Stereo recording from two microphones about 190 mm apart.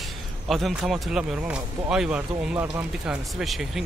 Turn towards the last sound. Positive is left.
turn(degrees=0)  # may be behind; listen again after turning